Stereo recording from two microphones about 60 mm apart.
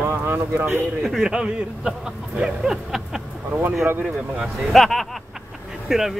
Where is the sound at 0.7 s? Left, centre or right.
Centre.